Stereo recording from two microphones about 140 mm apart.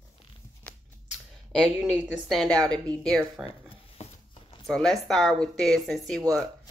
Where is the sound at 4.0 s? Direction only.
50° left (ahead or behind).